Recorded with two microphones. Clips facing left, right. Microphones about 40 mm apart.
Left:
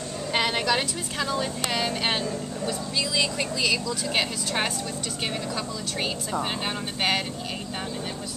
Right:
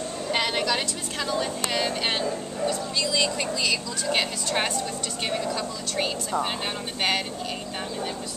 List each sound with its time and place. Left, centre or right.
0.3 s a woman's voice: centre